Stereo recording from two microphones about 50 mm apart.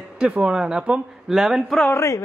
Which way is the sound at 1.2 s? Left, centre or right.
Centre.